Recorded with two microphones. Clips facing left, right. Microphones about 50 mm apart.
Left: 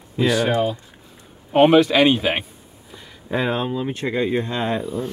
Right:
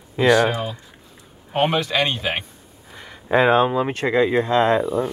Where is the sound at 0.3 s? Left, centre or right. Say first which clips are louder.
Right 3 dB; centre.